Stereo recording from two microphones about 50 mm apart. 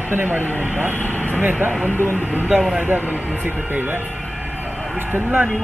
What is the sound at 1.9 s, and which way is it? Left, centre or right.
Speech, left.